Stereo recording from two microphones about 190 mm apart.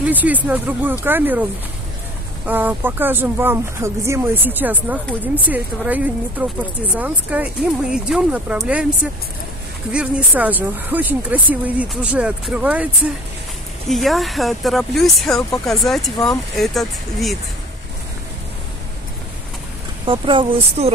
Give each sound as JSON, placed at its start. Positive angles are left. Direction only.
{"t": 0.0, "sound": "speech", "side_deg": -10}
{"t": 9.9, "sound": "speech", "side_deg": -5}
{"t": 20.1, "sound": "speech", "side_deg": -25}